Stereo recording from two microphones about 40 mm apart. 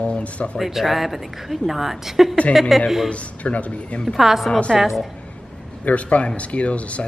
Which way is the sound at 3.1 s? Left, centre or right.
Left.